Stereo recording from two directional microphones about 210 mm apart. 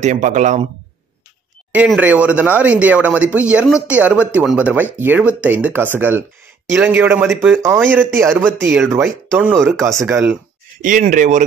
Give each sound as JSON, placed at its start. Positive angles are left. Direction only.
{"t": 0.0, "sound": "speech", "side_deg": -35}
{"t": 1.7, "sound": "speech", "side_deg": -5}
{"t": 10.8, "sound": "speech", "side_deg": -40}